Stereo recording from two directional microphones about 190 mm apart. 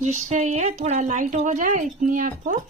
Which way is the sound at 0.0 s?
40° right (ahead or behind).